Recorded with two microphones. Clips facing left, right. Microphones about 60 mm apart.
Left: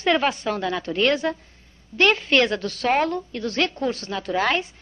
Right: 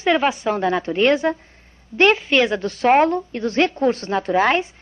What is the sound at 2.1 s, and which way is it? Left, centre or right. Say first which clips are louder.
Speech: right 2 dB; centre.